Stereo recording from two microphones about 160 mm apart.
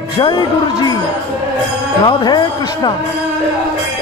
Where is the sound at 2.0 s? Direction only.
25° left (ahead or behind).